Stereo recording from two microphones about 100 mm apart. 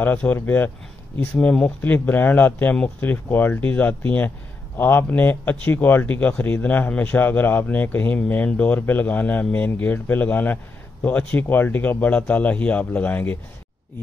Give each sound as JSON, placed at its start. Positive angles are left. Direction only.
{"t": 0.0, "sound": "speech", "side_deg": 20}